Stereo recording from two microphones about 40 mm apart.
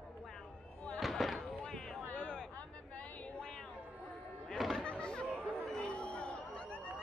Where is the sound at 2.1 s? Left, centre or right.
Left.